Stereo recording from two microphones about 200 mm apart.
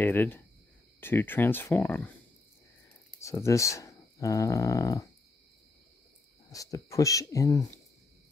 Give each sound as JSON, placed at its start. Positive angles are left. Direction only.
{"t": 0.0, "sound": "speech", "side_deg": 10}
{"t": 3.2, "sound": "speech", "side_deg": 15}
{"t": 6.5, "sound": "speech", "side_deg": 15}